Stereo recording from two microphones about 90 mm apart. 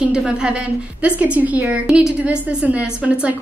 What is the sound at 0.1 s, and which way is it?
A woman's voice, 10° right (ahead or behind).